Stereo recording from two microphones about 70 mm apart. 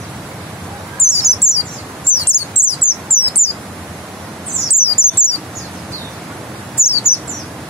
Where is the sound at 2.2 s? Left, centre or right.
Left.